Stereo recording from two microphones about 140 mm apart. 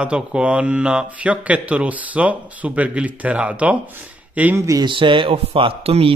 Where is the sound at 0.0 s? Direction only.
5° right (ahead or behind).